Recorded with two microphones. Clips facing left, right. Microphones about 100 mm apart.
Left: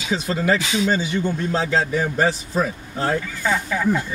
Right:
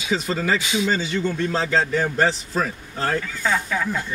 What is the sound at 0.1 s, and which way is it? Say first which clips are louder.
Speech: left 2 dB; 5° left (ahead or behind).